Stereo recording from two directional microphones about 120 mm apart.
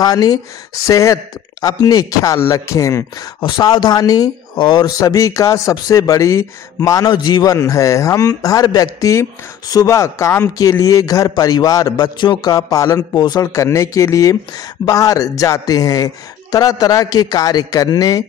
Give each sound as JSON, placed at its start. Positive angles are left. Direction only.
{"t": 0.0, "sound": "a man's voice", "side_deg": 30}
{"t": 7.5, "sound": "a man's voice", "side_deg": 25}